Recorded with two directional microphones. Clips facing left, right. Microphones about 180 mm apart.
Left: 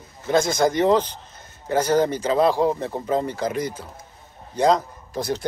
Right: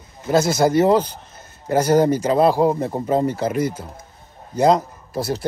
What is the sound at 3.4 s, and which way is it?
Speech, 10° right (ahead or behind).